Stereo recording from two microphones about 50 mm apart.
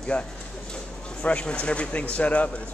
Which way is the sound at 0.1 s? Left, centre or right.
Left.